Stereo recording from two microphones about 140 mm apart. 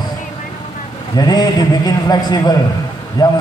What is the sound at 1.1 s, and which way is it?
A man's voice, 30° left (ahead or behind).